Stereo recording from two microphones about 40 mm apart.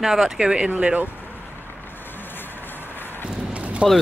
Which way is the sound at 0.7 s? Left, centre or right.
Right.